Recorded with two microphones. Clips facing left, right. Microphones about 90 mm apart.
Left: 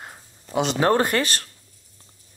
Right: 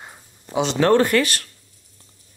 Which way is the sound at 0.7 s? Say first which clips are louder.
Right 4 dB; 20° left (ahead or behind).